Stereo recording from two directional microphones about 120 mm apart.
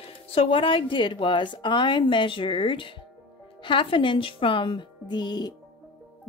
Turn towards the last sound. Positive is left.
turn(degrees=35)  # may be behind; listen again after turning